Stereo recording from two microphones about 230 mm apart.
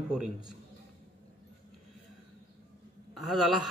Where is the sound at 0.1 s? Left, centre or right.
Centre.